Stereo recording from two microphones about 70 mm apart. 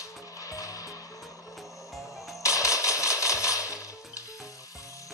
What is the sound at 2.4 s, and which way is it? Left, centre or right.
Music, left.